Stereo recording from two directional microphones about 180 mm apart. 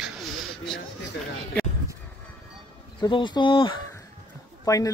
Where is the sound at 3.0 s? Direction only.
25° left (ahead or behind).